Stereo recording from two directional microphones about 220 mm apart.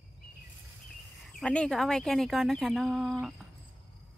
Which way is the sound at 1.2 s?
Centre (ahead or behind).